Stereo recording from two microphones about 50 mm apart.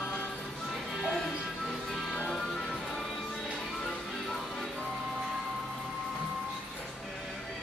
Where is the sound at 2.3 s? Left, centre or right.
Centre.